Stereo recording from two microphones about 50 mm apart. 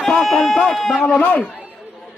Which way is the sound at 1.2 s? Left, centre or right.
Left.